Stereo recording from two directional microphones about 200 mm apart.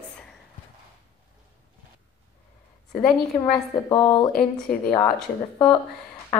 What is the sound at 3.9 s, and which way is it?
Speech, 20° left (ahead or behind).